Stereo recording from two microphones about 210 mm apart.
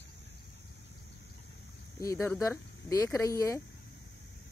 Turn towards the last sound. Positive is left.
turn(degrees=15)  # may be behind; listen again after turning